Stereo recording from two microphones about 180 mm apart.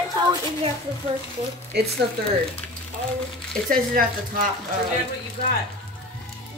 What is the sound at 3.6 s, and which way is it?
Speech, 50° right (ahead or behind).